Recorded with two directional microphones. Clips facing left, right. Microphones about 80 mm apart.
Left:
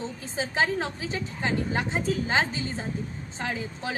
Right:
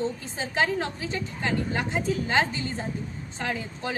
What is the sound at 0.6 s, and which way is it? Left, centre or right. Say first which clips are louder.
Speech: right 1 dB; centre.